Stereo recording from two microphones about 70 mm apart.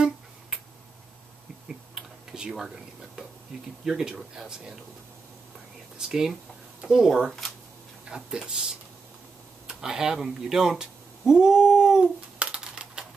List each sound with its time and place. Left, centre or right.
1.7 s typing: centre
3.8 s speech: centre
5.9 s speech: centre
8.1 s speech: centre
9.7 s a sound: centre